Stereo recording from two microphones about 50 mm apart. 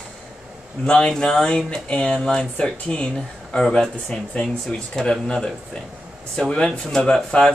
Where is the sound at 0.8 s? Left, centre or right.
Left.